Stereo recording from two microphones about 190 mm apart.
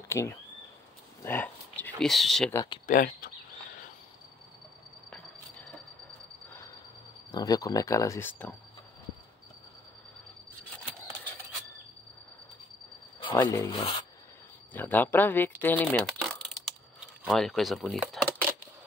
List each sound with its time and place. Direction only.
0.1 s speech: 15° left (ahead or behind)
1.2 s a sound: 10° left (ahead or behind)
2.5 s speech: 20° left (ahead or behind)
2.9 s speech: 45° left (ahead or behind)
7.2 s speech: 20° left (ahead or behind)
13.2 s a sound: 25° left (ahead or behind)
13.7 s speech: 25° left (ahead or behind)
14.7 s speech: 10° left (ahead or behind)